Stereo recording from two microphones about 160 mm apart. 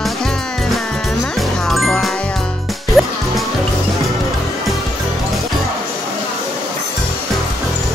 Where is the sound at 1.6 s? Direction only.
Centre (ahead or behind).